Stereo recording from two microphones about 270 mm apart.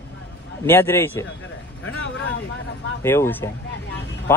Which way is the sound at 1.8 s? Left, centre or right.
Left.